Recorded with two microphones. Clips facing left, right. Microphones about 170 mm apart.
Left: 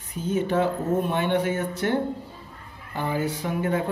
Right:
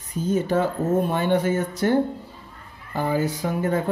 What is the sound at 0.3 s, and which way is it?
Speech, 40° right (ahead or behind).